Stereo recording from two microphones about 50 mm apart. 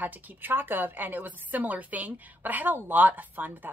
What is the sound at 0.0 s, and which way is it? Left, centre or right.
A woman's voice, right.